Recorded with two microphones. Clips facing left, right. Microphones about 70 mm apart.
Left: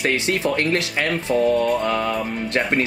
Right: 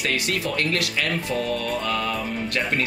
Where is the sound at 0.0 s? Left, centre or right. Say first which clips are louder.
Left 5 dB; left.